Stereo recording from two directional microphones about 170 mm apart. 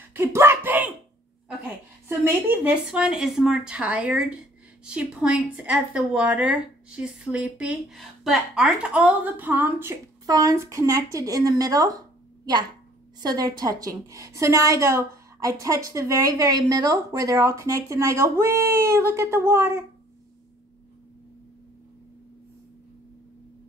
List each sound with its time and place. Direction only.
0.1 s a sound: 15° right (ahead or behind)
2.0 s a woman's voice: 10° right (ahead or behind)
13.2 s a woman's voice: 25° right (ahead or behind)